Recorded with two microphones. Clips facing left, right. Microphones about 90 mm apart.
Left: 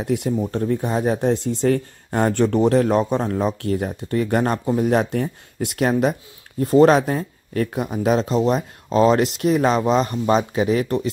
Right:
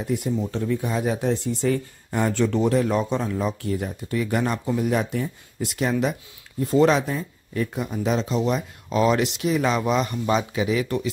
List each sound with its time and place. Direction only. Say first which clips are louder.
0.0 s speech: left 3 dB; 60° left (ahead or behind); by 11.1 s 45° left (ahead or behind)